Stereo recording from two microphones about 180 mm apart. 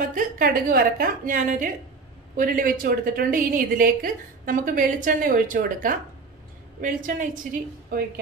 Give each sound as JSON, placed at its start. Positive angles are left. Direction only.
{"t": 0.0, "sound": "a woman's voice", "side_deg": -50}